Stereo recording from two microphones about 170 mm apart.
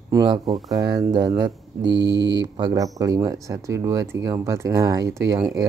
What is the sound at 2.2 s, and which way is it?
Speech, 90° right.